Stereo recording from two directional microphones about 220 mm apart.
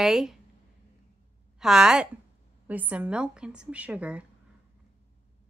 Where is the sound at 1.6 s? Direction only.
Centre (ahead or behind).